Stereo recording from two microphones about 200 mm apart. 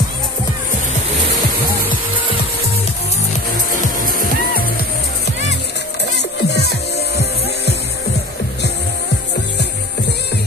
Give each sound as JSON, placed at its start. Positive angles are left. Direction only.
{"t": 6.1, "sound": "music", "side_deg": 60}
{"t": 9.6, "sound": "music", "side_deg": 55}